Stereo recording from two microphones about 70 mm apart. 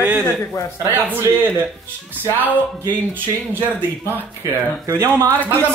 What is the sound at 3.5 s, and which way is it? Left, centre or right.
Speech, right.